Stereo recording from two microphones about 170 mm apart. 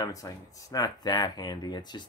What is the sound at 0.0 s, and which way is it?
Speech, 20° left (ahead or behind).